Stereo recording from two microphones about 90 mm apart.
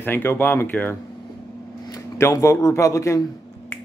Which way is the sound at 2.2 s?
35° left (ahead or behind).